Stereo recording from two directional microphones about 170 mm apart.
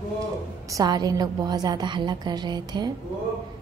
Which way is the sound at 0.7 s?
20° right (ahead or behind).